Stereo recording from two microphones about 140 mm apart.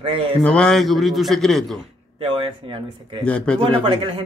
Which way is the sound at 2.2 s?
40° right (ahead or behind).